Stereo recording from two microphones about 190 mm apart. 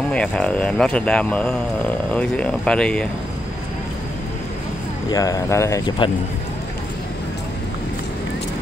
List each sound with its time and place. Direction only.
0.1 s speech: 5° left (ahead or behind)
5.1 s speech: 20° left (ahead or behind)